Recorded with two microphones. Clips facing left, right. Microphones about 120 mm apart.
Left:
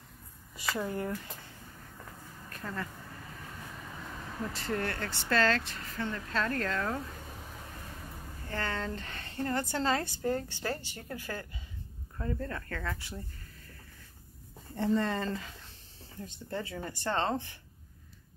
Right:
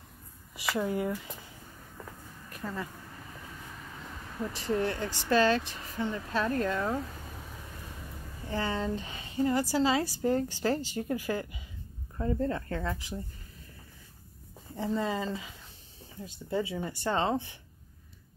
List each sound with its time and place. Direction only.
0.7 s speech: 5° right (ahead or behind)
2.5 s speech: 10° right (ahead or behind)
4.6 s speech: 15° right (ahead or behind)
8.5 s speech: 15° right (ahead or behind)
10.2 s speech: 20° right (ahead or behind)
14.8 s speech: 5° right (ahead or behind)